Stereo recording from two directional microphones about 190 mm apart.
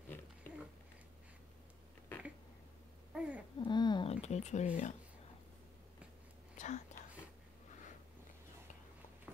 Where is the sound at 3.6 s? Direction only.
25° left (ahead or behind).